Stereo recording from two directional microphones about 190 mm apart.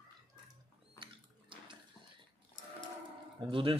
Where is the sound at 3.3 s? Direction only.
25° right (ahead or behind).